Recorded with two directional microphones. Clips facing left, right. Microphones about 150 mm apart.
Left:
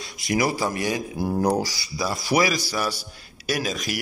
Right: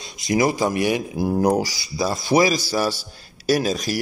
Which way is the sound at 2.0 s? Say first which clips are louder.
Right 4 dB; 25° right (ahead or behind).